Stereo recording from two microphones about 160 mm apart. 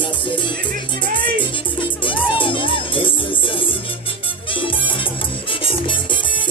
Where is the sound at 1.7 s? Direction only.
30° left (ahead or behind).